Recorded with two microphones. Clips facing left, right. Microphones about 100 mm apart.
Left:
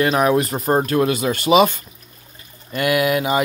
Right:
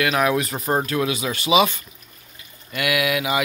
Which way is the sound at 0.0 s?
35° left (ahead or behind).